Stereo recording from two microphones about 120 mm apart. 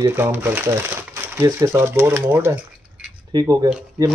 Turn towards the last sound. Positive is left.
turn(degrees=-30)  # may be behind; listen again after turning